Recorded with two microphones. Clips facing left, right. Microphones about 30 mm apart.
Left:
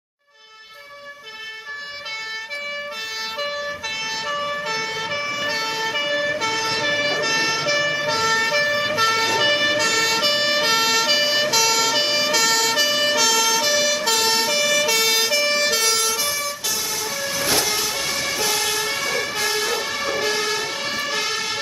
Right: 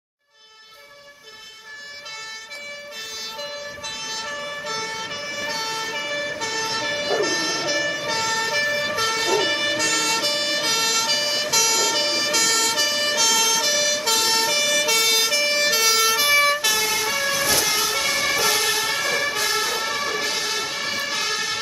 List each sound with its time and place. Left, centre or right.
4.3 s emergency vehicle: centre
5.3 s emergency vehicle: centre
8.1 s vehicle: centre
17.6 s vehicle: centre